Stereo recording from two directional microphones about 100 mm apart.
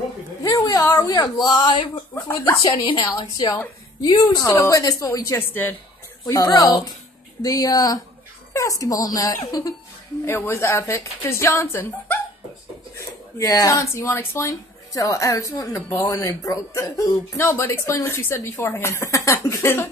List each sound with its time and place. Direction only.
0.4 s a sound: 35° left (ahead or behind)
1.0 s speech: 35° left (ahead or behind); by 1.9 s 55° left (ahead or behind)
2.2 s a woman's voice: 30° left (ahead or behind)
2.7 s speech: 50° left (ahead or behind); by 5.4 s 30° left (ahead or behind)
5.4 s a woman's voice: 20° left (ahead or behind)
6.2 s a woman's voice: 40° left (ahead or behind)
12.9 s a woman's voice: 35° left (ahead or behind)